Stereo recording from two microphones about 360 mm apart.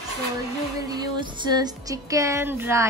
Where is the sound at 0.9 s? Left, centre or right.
Centre.